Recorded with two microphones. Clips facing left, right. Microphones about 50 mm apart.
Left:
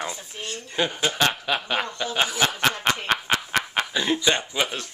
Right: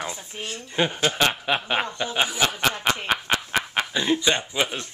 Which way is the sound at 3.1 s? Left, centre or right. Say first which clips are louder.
Even; centre.